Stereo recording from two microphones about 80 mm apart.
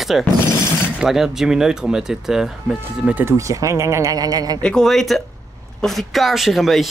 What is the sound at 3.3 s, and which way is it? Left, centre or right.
Speech, right.